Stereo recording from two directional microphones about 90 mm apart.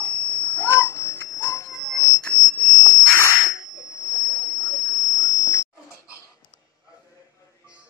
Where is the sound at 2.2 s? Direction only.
15° left (ahead or behind).